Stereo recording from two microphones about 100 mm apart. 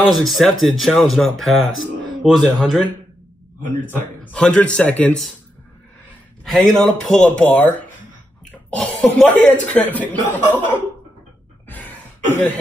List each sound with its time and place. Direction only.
0.0 s speech: centre (ahead or behind)
4.3 s speech: 10° left (ahead or behind)
6.4 s speech: 5° left (ahead or behind)
8.7 s speech: 5° left (ahead or behind)
9.3 s speech: 15° left (ahead or behind)
11.7 s cough: 15° left (ahead or behind)